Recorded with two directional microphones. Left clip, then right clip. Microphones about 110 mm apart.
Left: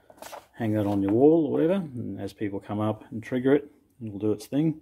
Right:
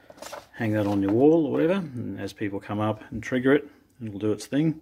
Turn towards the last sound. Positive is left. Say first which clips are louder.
# right 1 dB
turn(degrees=25)  # may be behind; listen again after turning